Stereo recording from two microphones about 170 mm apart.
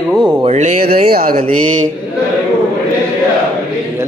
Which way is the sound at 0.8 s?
65° right (ahead or behind).